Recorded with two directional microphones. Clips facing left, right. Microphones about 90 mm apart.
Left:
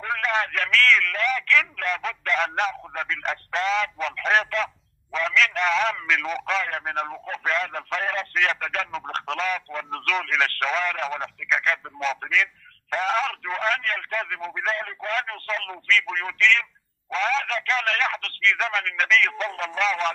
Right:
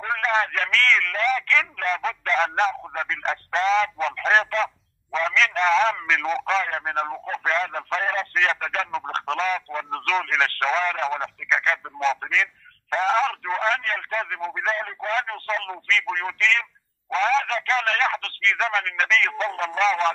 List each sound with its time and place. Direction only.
0.0 s a man's voice: 30° right (ahead or behind)